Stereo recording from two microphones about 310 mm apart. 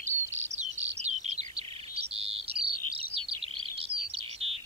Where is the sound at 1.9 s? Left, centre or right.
Centre.